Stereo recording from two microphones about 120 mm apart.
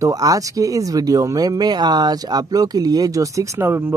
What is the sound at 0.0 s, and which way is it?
Speech, 30° right (ahead or behind).